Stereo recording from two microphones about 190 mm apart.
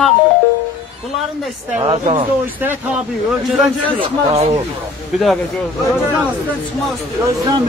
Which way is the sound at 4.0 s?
35° right (ahead or behind).